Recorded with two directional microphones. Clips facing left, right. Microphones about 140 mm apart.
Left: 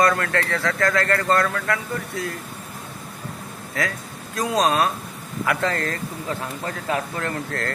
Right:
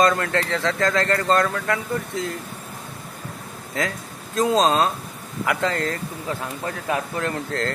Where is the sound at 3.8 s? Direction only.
20° right (ahead or behind).